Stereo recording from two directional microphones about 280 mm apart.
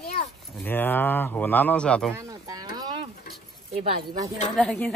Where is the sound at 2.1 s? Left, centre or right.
Centre.